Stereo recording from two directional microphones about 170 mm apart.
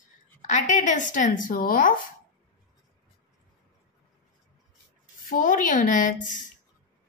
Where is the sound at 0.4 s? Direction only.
45° left (ahead or behind).